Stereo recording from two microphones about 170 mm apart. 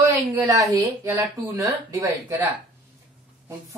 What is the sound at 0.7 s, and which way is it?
Speech, 20° right (ahead or behind).